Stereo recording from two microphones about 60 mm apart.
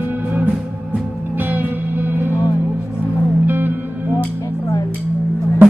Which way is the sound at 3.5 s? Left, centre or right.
Right.